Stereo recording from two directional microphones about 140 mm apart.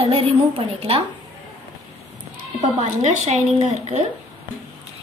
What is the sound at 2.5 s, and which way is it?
Speech, 55° right (ahead or behind).